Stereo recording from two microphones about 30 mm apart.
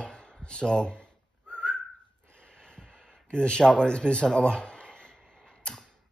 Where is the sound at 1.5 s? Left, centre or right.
Left.